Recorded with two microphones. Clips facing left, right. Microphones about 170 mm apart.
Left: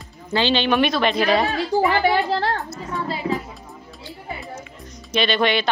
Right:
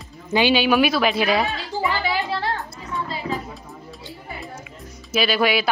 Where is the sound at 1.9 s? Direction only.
60° left (ahead or behind).